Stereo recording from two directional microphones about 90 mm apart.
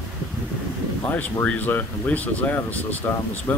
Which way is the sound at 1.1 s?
20° left (ahead or behind).